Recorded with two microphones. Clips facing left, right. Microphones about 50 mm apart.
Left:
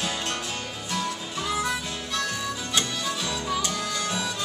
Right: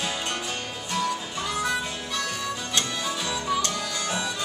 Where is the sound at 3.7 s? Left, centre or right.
Centre.